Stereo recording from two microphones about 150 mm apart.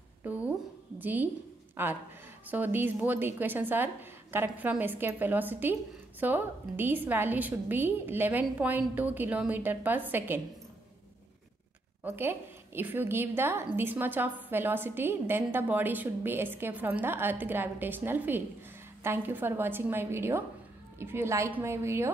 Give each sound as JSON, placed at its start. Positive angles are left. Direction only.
{"t": 0.2, "sound": "a sound", "side_deg": -10}
{"t": 1.8, "sound": "a woman's voice", "side_deg": -15}
{"t": 12.0, "sound": "a woman's voice", "side_deg": -15}